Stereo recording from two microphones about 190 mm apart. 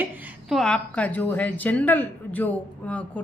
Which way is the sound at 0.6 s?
5° left (ahead or behind).